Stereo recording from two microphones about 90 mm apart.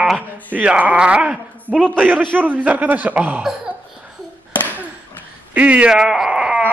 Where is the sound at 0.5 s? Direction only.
15° right (ahead or behind).